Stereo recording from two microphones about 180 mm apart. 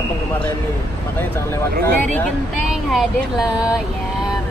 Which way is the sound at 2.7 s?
Centre (ahead or behind).